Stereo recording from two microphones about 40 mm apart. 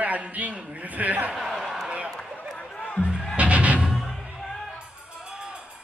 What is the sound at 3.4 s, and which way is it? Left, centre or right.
Music, right.